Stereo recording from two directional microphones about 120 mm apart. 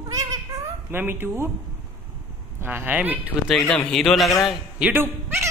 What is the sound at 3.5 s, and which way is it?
A man's voice, 5° left (ahead or behind).